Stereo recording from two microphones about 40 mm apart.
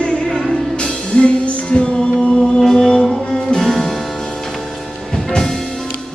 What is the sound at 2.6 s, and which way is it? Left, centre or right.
Music, centre.